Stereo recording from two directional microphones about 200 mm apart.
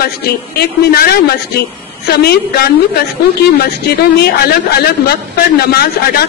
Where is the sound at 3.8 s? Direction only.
55° left (ahead or behind).